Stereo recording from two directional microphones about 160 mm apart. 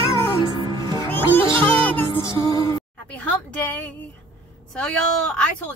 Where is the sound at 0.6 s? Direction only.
25° right (ahead or behind).